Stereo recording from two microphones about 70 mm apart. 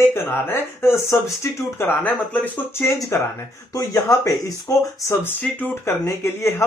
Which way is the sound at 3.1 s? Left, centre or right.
Left.